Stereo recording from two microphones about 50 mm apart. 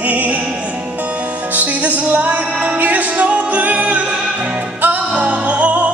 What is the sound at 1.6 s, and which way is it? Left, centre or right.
Music, right.